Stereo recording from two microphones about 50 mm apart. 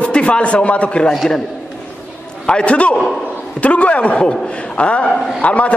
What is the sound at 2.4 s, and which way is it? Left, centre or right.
A man's voice, left.